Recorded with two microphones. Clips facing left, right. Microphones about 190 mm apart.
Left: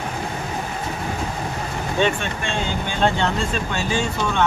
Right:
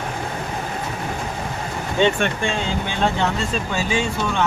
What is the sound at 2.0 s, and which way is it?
Speech, 15° right (ahead or behind).